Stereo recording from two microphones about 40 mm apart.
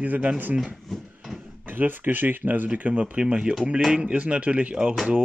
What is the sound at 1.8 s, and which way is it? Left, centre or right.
Speech, right.